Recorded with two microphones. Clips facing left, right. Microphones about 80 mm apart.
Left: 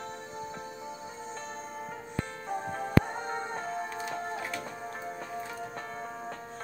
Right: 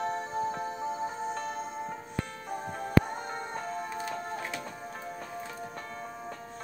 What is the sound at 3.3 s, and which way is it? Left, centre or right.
Music, left.